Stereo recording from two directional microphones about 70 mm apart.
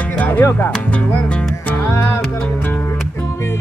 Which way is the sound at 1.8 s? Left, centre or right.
Left.